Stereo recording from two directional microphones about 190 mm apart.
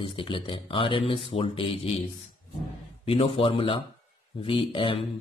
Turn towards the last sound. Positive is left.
turn(degrees=30)  # may be behind; listen again after turning